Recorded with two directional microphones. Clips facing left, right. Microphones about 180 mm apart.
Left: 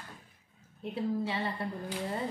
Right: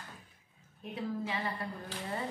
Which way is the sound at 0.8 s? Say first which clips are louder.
Left 5 dB; 30° left (ahead or behind).